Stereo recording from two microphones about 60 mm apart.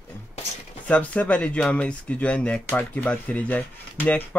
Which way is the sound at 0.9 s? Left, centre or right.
Left.